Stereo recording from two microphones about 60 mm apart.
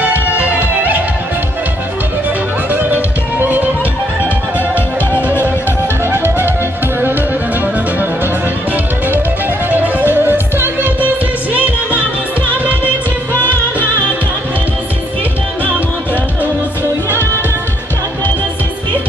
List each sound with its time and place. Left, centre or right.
0.0 s music: right
2.7 s music: right
6.0 s music: right
9.7 s music: right
13.4 s music: left